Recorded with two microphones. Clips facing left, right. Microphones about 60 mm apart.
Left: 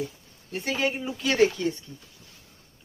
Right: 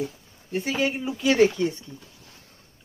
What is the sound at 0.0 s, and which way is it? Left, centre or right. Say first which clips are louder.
Speech: right 3 dB; centre.